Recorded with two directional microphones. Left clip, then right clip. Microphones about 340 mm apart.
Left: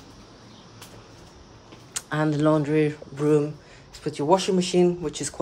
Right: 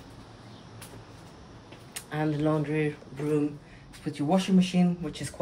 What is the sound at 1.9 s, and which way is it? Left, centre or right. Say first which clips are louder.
Speech: left 5 dB; centre.